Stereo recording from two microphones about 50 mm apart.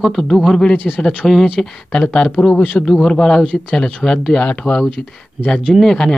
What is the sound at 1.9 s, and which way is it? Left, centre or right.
Speech, left.